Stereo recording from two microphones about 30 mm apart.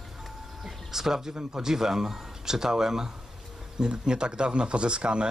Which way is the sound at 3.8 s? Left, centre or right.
Right.